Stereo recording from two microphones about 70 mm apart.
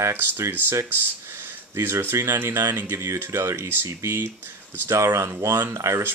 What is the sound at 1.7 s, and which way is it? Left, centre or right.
Speech, right.